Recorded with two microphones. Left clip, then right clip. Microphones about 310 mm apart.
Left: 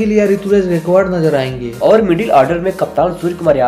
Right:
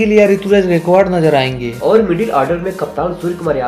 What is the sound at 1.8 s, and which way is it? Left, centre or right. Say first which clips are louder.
Speech: left 2 dB; left.